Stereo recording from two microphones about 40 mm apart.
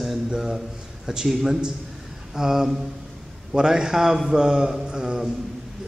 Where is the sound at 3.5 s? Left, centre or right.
Centre.